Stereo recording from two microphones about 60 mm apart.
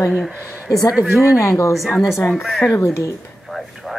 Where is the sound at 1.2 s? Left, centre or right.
Left.